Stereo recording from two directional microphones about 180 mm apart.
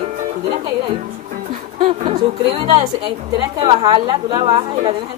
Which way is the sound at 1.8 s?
30° right (ahead or behind).